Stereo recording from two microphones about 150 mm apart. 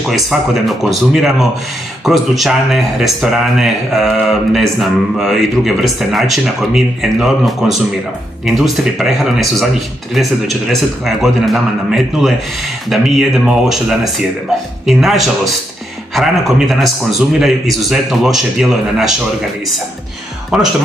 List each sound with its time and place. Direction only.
0.1 s speech: centre (ahead or behind)
20.5 s speech: centre (ahead or behind)